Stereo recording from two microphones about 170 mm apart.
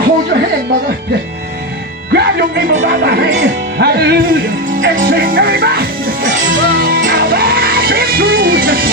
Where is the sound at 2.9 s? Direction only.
70° right (ahead or behind).